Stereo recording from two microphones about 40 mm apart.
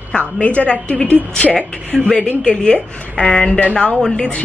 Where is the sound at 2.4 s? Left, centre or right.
Left.